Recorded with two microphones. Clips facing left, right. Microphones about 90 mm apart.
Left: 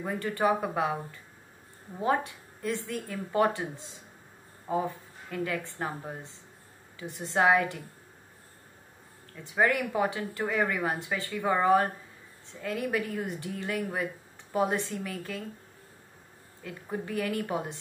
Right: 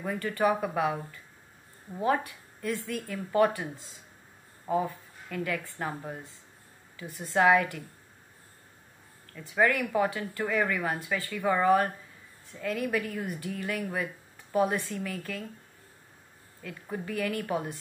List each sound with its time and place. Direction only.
0.0 s speech: 25° left (ahead or behind)
9.3 s speech: 20° left (ahead or behind)
16.6 s speech: 25° left (ahead or behind)